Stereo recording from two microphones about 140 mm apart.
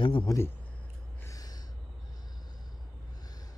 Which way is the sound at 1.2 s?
25° left (ahead or behind).